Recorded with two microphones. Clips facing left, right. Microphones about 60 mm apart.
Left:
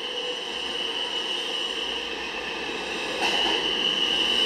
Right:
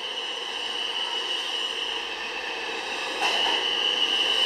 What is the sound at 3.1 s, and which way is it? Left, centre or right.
Train, centre.